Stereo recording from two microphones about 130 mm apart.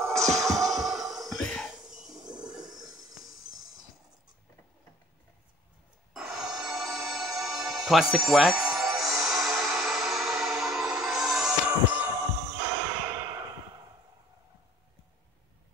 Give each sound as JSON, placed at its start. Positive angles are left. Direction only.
{"t": 0.0, "sound": "music", "side_deg": 5}
{"t": 6.1, "sound": "music", "side_deg": 0}
{"t": 13.0, "sound": "a sound", "side_deg": -25}